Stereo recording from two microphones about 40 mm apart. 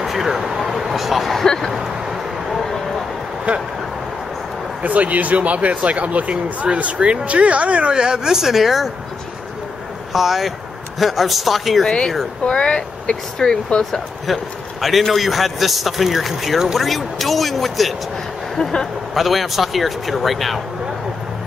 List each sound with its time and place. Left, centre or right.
0.0 s vehicle: centre
1.4 s speech: centre
1.7 s a sound: centre
3.5 s a sound: right
4.8 s speech: right; by 8.9 s centre
10.1 s a man's voice: centre
11.8 s speech: centre
14.2 s a man's voice: centre
18.6 s speech: centre
19.1 s a man's voice: centre